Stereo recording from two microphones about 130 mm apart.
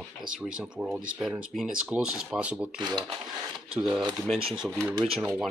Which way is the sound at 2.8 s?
35° right (ahead or behind).